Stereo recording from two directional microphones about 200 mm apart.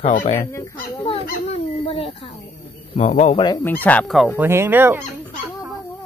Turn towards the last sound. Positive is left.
turn(degrees=-10)  # may be behind; listen again after turning